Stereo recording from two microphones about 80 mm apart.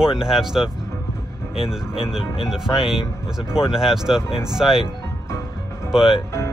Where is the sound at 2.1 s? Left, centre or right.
Centre.